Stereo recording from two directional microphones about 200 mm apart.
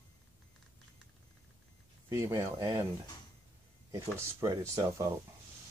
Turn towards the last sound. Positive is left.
turn(degrees=-15)  # may be behind; listen again after turning